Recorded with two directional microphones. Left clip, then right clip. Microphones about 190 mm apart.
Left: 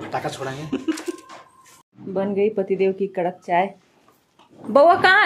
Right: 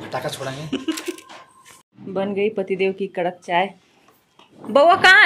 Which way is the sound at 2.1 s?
5° left (ahead or behind).